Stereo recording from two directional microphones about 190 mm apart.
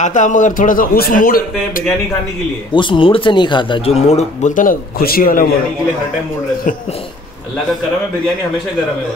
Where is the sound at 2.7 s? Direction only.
25° left (ahead or behind); by 5.5 s 50° left (ahead or behind).